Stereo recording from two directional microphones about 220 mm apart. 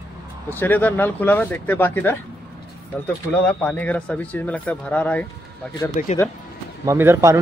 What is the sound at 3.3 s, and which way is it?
Speech, 5° left (ahead or behind).